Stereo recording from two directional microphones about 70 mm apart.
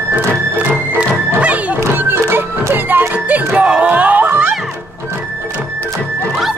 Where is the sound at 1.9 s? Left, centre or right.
Right.